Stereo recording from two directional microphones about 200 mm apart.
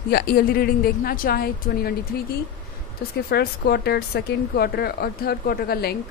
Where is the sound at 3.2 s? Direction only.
55° left (ahead or behind).